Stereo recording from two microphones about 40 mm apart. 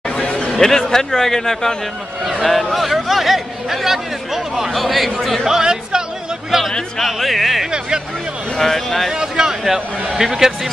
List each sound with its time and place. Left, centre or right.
0.1 s chatter: left
0.5 s speech: centre
2.4 s a man's voice: centre
4.7 s a man's voice: centre
5.4 s a man's voice: centre
8.5 s speech: centre
9.1 s speech: centre